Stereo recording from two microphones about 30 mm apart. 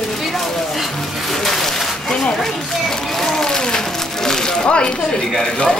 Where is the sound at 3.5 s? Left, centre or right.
Left.